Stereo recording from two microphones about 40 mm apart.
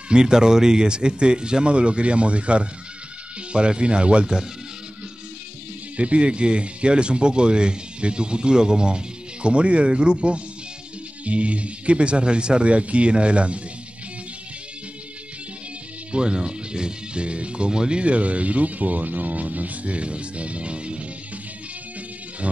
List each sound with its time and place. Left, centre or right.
0.1 s speech: centre
5.9 s speech: right
16.1 s speech: right